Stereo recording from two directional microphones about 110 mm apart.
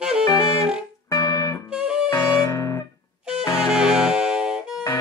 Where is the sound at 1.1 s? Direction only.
30° left (ahead or behind).